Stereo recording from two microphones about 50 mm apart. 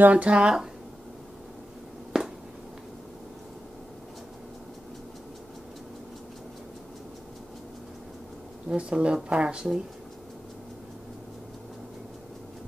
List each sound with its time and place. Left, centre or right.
0.0 s speech: right
2.1 s a sound: centre
8.6 s speech: right